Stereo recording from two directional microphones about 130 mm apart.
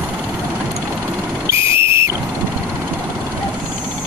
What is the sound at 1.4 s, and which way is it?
Whistle, 20° right (ahead or behind).